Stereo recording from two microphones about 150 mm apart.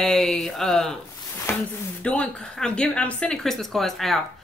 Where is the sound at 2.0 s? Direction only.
5° left (ahead or behind).